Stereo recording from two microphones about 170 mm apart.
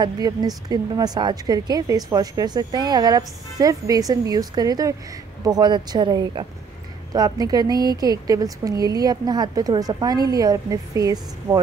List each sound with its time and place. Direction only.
0.0 s a woman's voice: 25° right (ahead or behind)